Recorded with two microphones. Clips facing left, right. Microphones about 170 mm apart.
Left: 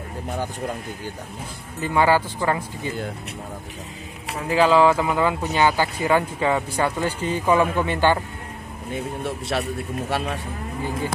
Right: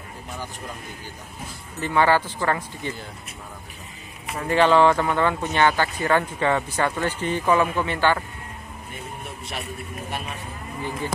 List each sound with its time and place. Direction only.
1.8 s speech: 10° left (ahead or behind)
4.3 s speech: 10° left (ahead or behind)
9.2 s a man's voice: 80° left